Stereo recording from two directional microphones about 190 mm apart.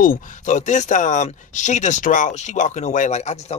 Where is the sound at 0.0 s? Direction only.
45° left (ahead or behind).